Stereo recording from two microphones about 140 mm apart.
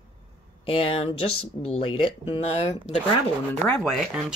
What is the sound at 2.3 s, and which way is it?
Speech, 50° left (ahead or behind).